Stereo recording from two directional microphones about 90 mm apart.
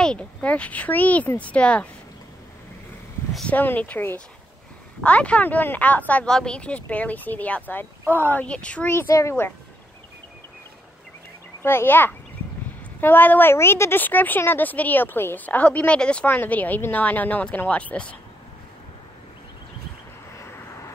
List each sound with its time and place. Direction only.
0.0 s speech: 10° left (ahead or behind)
3.4 s a woman's voice: 20° left (ahead or behind)
11.6 s a woman's voice: 25° left (ahead or behind)